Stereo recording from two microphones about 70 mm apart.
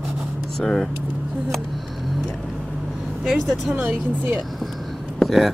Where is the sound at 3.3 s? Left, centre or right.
Centre.